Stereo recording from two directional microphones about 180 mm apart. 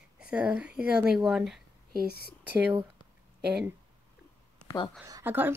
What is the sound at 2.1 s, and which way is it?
Speech, 60° left (ahead or behind).